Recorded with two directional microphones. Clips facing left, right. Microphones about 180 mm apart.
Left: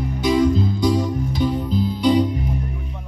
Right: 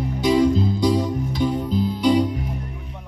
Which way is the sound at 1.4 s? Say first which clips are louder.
Even; 15° right (ahead or behind).